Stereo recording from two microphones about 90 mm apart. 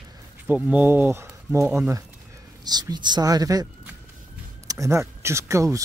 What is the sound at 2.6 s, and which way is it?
Speech, 50° right (ahead or behind).